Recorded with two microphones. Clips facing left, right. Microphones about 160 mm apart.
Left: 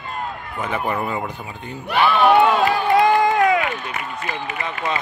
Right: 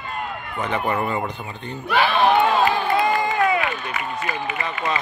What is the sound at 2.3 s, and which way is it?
Crowd, 75° left (ahead or behind).